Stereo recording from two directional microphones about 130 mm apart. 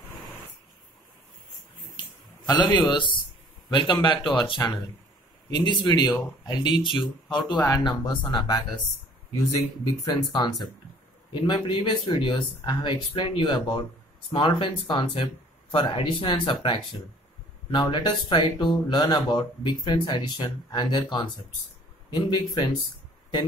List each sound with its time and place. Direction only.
2.4 s a man's voice: 35° left (ahead or behind)